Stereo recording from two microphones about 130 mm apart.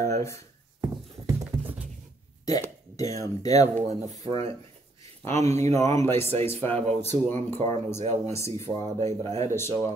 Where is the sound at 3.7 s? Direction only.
65° right (ahead or behind).